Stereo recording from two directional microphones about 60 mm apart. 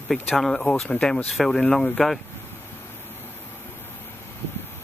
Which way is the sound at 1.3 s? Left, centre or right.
Centre.